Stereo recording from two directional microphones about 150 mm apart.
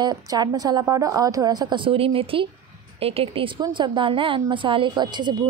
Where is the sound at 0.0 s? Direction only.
25° right (ahead or behind).